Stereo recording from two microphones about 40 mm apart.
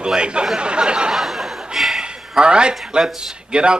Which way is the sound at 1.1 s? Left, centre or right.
Centre.